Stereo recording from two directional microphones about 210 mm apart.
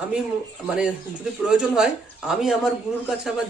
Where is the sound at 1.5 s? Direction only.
5° right (ahead or behind).